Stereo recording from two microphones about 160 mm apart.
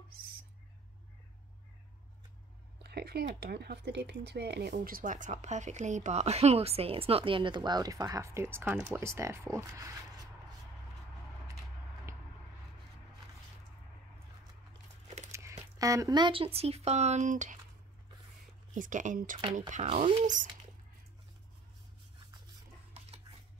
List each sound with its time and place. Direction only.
2.8 s speech: 80° right
4.7 s speech: 60° right (ahead or behind); by 8.7 s 15° right (ahead or behind)
8.7 s speech: 5° right (ahead or behind)
9.0 s speech: 15° right (ahead or behind)
12.1 s a sound: 15° right (ahead or behind)
15.3 s speech: 15° right (ahead or behind); by 17.6 s 50° right (ahead or behind)
18.8 s speech: 55° right (ahead or behind)